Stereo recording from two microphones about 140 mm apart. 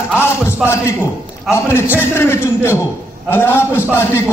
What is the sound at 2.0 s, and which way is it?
A man's voice, 15° left (ahead or behind).